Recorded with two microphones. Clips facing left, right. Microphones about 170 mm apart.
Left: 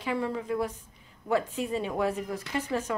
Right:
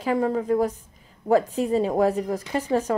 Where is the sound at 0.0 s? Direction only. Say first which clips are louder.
Right 7 dB; 40° right (ahead or behind).